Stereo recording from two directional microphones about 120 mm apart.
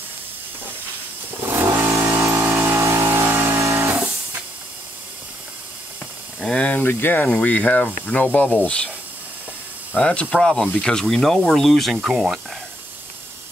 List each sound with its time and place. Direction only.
1.5 s vehicle: 25° right (ahead or behind)
6.4 s speech: 10° left (ahead or behind)
9.9 s speech: 10° left (ahead or behind)